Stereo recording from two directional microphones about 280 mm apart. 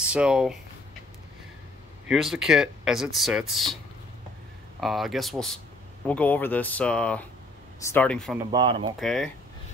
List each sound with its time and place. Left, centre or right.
0.0 s speech: centre
2.0 s speech: centre
4.7 s speech: centre
8.4 s speech: centre
9.0 s speech: centre